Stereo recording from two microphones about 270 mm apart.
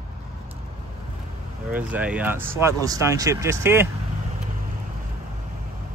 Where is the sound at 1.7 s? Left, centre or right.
Centre.